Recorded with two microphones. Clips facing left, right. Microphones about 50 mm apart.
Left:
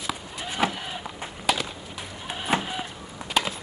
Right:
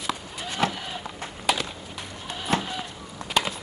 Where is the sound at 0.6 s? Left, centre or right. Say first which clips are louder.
Even; centre.